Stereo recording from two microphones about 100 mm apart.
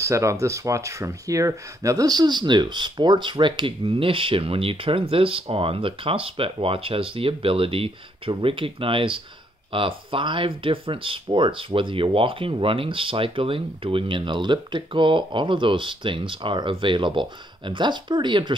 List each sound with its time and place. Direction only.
0.0 s speech: 30° right (ahead or behind); by 18.5 s 50° right (ahead or behind)